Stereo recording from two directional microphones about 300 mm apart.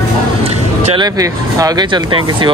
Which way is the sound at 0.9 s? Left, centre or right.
Centre.